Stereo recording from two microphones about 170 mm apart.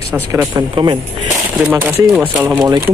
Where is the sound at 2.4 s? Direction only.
20° right (ahead or behind).